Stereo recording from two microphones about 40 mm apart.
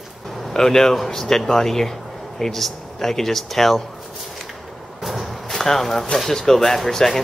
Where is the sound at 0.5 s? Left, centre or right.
Centre.